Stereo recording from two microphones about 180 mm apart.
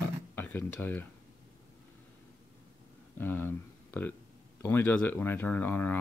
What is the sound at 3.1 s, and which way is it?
Speech, 10° left (ahead or behind).